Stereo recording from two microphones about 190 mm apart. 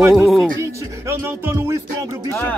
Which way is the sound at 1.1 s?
15° right (ahead or behind).